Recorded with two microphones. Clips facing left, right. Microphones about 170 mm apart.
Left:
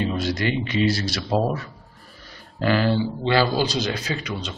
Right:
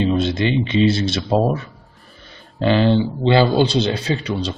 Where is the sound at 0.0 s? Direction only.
25° right (ahead or behind).